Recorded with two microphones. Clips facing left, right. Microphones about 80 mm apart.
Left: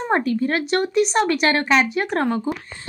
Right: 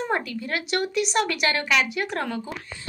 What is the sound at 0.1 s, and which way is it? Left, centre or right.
Speech, left.